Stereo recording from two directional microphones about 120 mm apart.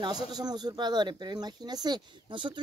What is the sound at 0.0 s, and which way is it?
Speech, 35° right (ahead or behind).